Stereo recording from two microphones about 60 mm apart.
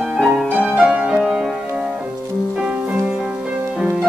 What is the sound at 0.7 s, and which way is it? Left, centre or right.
Music, centre.